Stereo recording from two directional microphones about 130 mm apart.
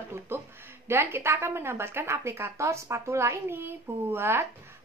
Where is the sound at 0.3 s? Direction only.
15° right (ahead or behind).